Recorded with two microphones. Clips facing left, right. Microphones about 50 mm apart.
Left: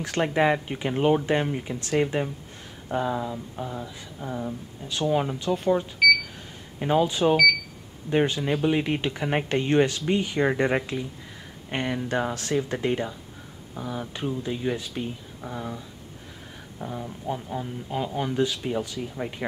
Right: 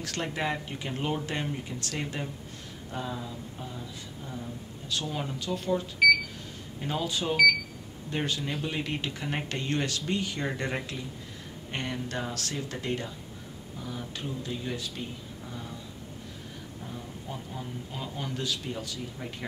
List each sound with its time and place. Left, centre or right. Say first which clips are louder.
0.0 s speech: left 9 dB; left
2.9 s speech: left 9 dB; left
4.8 s speech: left 9 dB; left
6.0 s a sound: left 2 dB; centre
6.8 s speech: left 10 dB; left
15.4 s speech: left 9 dB; left
16.8 s speech: left 10 dB; left
17.6 s speech: left 8 dB; left